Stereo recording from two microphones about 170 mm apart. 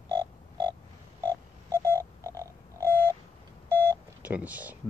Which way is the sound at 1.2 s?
15° right (ahead or behind).